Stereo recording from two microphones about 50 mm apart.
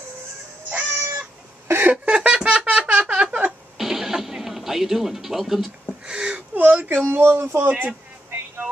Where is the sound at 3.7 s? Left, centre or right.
Centre.